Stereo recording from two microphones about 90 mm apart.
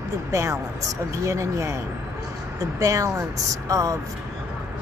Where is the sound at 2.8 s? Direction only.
40° right (ahead or behind).